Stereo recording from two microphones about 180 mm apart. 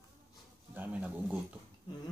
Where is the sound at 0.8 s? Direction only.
10° right (ahead or behind).